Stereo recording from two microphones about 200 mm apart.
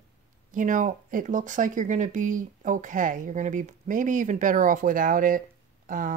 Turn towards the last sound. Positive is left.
turn(degrees=-40)  # may be behind; listen again after turning